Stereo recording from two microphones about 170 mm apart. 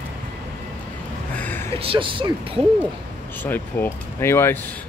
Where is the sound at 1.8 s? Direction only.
30° right (ahead or behind).